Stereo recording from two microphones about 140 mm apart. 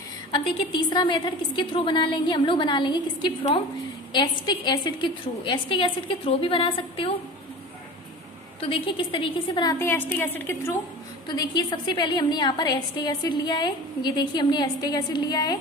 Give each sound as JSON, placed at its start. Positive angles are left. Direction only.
{"t": 0.3, "sound": "a woman's voice", "side_deg": 35}
{"t": 8.5, "sound": "a woman's voice", "side_deg": 40}
{"t": 9.8, "sound": "a woman's voice", "side_deg": 15}
{"t": 11.2, "sound": "a woman's voice", "side_deg": 30}